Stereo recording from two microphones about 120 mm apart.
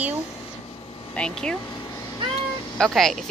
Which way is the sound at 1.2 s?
5° left (ahead or behind).